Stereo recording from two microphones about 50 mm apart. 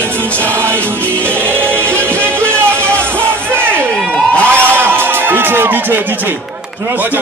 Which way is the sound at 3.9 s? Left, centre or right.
Left.